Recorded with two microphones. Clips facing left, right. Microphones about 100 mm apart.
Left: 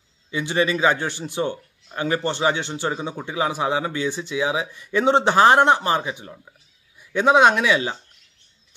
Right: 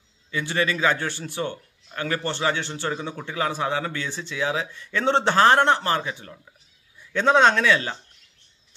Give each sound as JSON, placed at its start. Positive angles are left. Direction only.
{"t": 0.3, "sound": "a man's voice", "side_deg": 20}